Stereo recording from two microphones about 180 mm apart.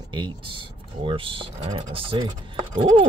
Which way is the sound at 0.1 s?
25° right (ahead or behind).